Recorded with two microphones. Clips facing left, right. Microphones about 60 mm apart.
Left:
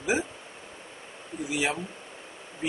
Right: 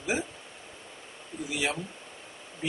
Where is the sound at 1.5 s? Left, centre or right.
Centre.